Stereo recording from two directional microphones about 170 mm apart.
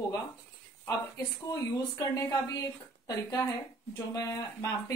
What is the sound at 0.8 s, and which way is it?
Speech, 20° left (ahead or behind).